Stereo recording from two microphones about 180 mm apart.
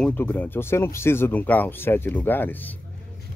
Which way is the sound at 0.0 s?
10° left (ahead or behind).